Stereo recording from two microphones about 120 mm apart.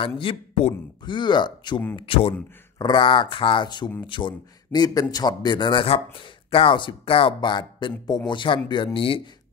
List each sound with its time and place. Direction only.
0.2 s speech: 50° left (ahead or behind)
1.0 s a man's voice: 40° left (ahead or behind)
2.0 s a man's voice: 50° left (ahead or behind)